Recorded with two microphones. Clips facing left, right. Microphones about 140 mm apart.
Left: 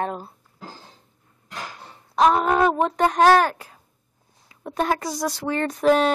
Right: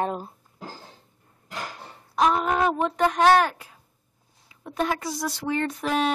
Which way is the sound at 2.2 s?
45° left (ahead or behind).